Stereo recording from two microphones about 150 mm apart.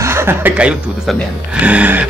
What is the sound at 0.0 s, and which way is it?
Speech, 15° right (ahead or behind).